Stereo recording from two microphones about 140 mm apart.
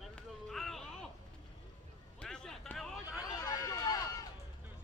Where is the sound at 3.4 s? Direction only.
25° left (ahead or behind).